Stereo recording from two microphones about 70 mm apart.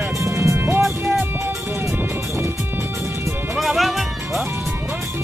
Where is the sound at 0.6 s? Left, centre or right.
Right.